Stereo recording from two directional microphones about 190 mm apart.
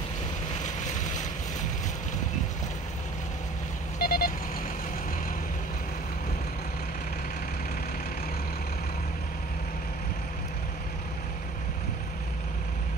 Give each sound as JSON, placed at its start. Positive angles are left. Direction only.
{"t": 0.6, "sound": "boat", "side_deg": 40}
{"t": 4.0, "sound": "vehicle", "side_deg": 50}